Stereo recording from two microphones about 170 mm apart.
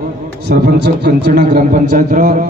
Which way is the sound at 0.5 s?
70° right (ahead or behind).